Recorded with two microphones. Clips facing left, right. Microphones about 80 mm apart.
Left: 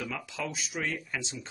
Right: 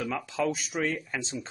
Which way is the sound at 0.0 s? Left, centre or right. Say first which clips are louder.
Right 7 dB; right.